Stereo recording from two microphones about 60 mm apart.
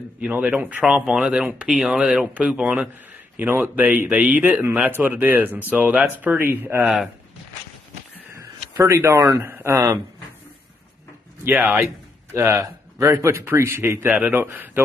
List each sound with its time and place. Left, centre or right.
0.3 s speech: right
3.3 s speech: right
8.8 s a man's voice: right
11.4 s speech: right
12.4 s a man's voice: right
14.0 s speech: right